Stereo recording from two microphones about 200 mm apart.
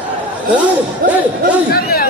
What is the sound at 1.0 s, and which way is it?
Speech, 45° right (ahead or behind).